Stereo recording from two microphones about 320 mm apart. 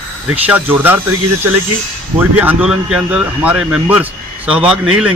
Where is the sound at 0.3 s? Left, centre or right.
Centre.